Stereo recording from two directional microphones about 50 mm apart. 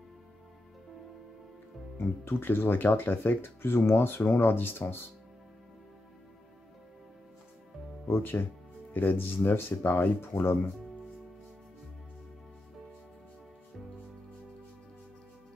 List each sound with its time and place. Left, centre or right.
2.0 s speech: left
8.2 s speech: left